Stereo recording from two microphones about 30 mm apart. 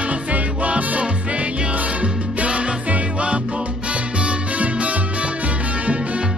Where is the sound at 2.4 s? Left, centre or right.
Right.